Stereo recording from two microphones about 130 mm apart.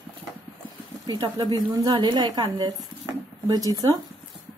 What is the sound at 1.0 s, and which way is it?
A woman's voice, 30° right (ahead or behind).